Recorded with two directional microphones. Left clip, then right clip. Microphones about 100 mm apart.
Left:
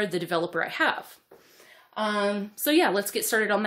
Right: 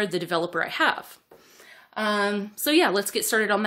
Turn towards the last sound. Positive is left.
turn(degrees=-20)  # may be behind; listen again after turning